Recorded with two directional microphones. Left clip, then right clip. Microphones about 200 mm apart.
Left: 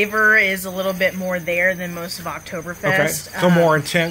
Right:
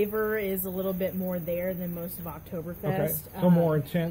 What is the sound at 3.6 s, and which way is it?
Speech, 40° left (ahead or behind).